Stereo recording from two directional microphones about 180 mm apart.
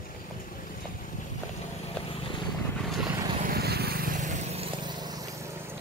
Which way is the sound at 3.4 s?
60° right (ahead or behind).